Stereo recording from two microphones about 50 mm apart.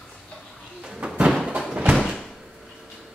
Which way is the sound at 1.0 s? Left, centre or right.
Right.